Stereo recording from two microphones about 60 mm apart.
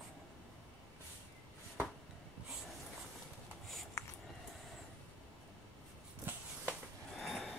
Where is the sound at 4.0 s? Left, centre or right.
Left.